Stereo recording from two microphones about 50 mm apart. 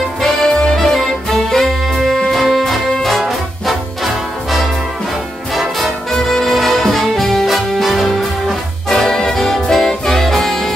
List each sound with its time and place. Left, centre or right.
0.4 s music: centre
0.7 s music: centre